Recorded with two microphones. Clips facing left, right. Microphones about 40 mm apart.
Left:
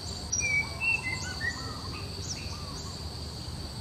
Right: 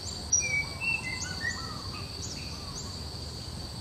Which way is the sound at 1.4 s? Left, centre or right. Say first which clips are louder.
Even; centre.